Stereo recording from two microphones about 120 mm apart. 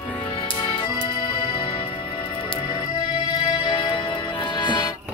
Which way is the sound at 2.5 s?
35° left (ahead or behind).